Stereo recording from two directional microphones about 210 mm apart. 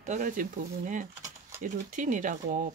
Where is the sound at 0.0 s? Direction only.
35° right (ahead or behind).